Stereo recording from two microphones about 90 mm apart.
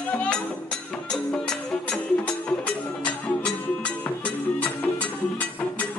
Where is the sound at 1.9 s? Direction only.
10° left (ahead or behind).